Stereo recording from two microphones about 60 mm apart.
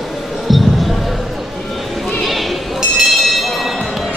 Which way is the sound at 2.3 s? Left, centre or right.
Centre.